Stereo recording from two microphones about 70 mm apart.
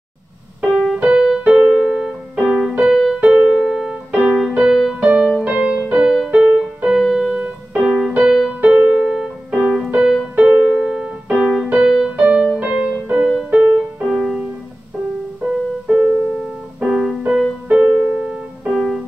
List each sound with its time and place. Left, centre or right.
0.6 s piano: centre
1.0 s keyboard: centre
5.4 s music: centre
6.1 s music: centre
6.5 s keyboard: centre
7.7 s keyboard: centre
8.2 s music: centre
8.7 s keyboard: centre
12.5 s music: centre
13.2 s music: centre
15.4 s keyboard: centre
17.3 s music: centre
17.8 s music: centre
18.7 s music: centre